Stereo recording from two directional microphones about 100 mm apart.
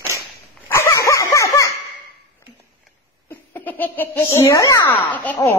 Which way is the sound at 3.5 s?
20° left (ahead or behind).